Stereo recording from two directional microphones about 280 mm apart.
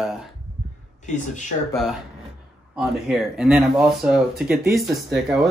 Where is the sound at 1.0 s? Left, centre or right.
Left.